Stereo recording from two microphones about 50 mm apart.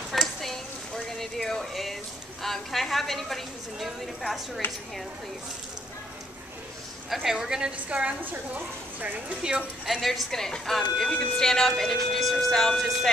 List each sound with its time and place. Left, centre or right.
0.1 s a sound: centre
2.4 s a woman's voice: centre
4.6 s speech: left
7.2 s a woman's voice: centre
8.2 s speech: right
9.4 s a woman's voice: right
9.8 s a woman's voice: centre